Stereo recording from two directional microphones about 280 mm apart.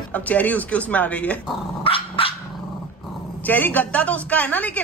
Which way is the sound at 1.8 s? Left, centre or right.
Centre.